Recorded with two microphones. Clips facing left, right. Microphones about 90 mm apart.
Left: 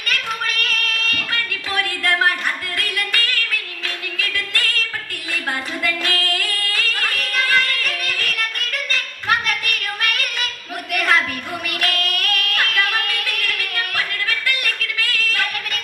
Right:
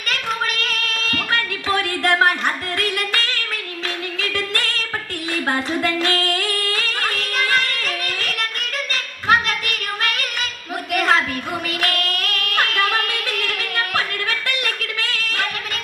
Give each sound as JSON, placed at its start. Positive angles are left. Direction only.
{"t": 0.1, "sound": "female singing", "side_deg": -25}
{"t": 4.2, "sound": "music", "side_deg": -25}
{"t": 5.3, "sound": "singing", "side_deg": -30}